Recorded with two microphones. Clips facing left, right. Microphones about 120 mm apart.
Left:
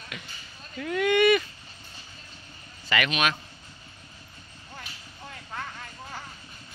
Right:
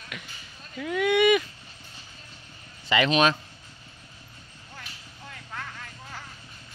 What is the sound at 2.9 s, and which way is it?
Speech, 25° right (ahead or behind).